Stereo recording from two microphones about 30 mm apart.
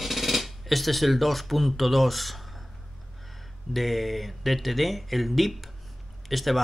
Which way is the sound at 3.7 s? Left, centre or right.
Centre.